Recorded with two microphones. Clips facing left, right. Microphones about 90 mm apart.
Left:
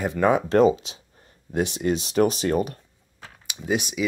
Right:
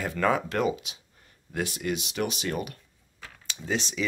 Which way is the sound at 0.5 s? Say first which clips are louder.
Left 9 dB; 30° left (ahead or behind).